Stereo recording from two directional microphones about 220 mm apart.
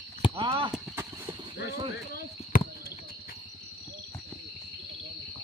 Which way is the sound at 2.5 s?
40° left (ahead or behind).